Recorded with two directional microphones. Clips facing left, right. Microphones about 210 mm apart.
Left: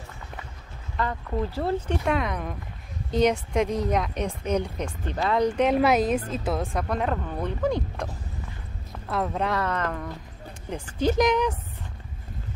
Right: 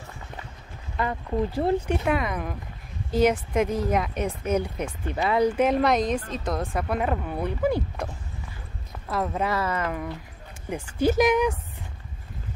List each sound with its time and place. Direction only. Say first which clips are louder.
0.9 s speech: right 2 dB; 15° right (ahead or behind)
2.0 s a woman's voice: right 1 dB; 5° right (ahead or behind)